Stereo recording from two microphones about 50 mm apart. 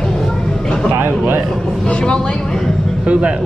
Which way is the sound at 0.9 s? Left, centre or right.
Right.